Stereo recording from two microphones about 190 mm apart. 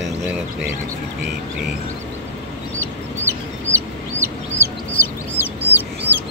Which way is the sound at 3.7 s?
15° right (ahead or behind).